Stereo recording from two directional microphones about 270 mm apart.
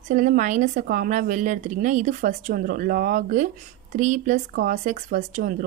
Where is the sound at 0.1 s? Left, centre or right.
Right.